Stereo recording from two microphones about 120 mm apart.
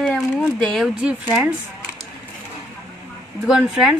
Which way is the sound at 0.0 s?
5° left (ahead or behind).